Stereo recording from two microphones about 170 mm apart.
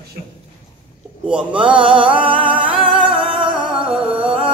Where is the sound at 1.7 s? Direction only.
30° right (ahead or behind).